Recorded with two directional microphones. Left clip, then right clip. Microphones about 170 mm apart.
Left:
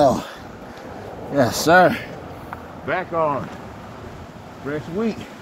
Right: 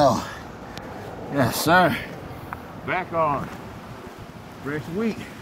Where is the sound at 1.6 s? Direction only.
90° right.